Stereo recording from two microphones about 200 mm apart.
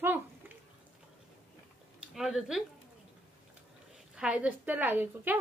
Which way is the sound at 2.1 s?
Centre (ahead or behind).